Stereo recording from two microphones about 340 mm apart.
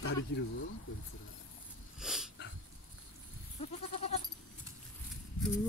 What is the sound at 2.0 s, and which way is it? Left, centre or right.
Dog, centre.